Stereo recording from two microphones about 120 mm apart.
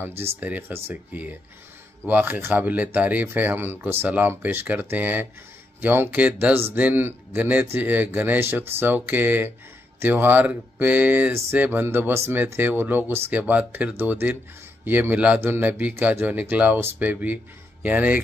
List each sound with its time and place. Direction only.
0.2 s speech: 15° right (ahead or behind)